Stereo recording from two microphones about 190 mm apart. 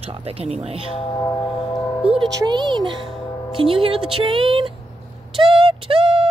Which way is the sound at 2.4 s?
20° right (ahead or behind).